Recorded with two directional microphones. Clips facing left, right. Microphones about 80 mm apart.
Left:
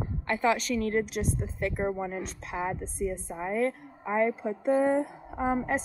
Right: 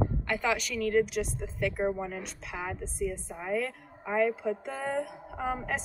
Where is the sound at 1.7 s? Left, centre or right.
Centre.